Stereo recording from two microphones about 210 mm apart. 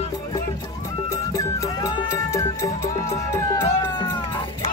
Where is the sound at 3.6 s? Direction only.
25° left (ahead or behind).